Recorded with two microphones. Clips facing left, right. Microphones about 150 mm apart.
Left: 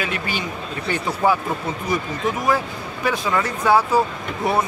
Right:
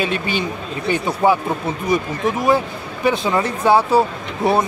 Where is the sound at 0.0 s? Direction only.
25° right (ahead or behind).